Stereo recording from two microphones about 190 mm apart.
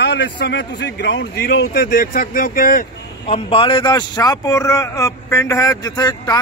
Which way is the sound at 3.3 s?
30° left (ahead or behind).